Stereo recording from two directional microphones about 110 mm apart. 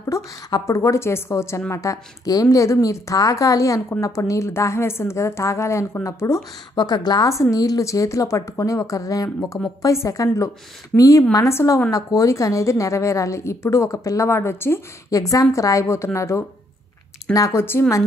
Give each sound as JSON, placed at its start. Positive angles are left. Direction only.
{"t": 0.0, "sound": "a woman's voice", "side_deg": 30}
{"t": 6.7, "sound": "a woman's voice", "side_deg": 40}